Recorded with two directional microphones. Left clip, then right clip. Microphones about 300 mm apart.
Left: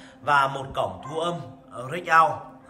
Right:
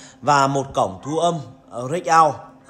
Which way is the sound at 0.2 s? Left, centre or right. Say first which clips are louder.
Right 5 dB; right.